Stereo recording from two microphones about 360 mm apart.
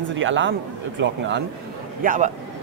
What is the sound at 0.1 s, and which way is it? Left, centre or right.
Speech, right.